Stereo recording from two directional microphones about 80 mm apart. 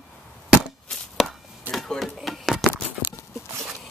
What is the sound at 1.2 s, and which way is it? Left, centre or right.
Chopping, centre.